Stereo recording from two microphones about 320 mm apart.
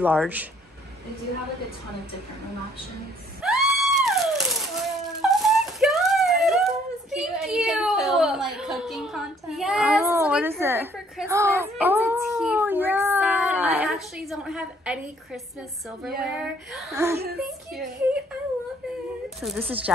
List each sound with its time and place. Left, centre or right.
0.0 s child singing: centre
3.4 s a sound: centre
16.2 s child singing: centre
19.2 s a woman's voice: centre